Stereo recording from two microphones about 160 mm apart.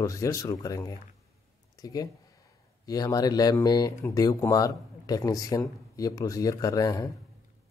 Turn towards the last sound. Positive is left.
turn(degrees=25)  # may be behind; listen again after turning